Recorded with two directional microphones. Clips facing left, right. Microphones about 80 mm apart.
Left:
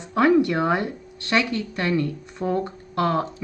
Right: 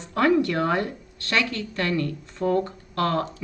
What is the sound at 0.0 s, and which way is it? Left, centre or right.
A woman's voice, centre.